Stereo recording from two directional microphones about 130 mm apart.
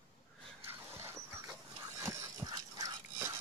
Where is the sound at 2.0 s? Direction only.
25° right (ahead or behind).